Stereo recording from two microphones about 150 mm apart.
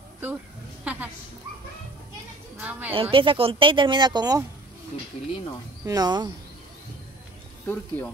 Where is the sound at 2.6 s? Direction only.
10° right (ahead or behind).